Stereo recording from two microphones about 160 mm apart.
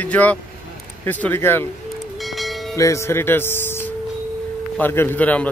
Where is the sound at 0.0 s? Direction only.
10° left (ahead or behind).